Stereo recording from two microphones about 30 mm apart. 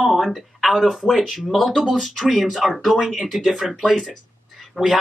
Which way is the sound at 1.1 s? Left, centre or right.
Centre.